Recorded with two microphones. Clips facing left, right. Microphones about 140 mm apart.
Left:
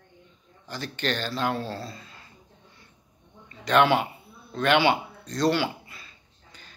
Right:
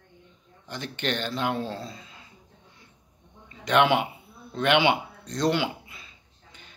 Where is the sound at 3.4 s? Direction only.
15° right (ahead or behind).